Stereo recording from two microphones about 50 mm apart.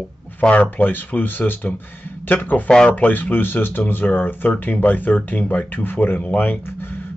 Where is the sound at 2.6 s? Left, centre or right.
Centre.